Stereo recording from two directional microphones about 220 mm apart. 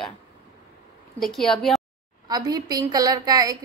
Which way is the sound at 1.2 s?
Centre (ahead or behind).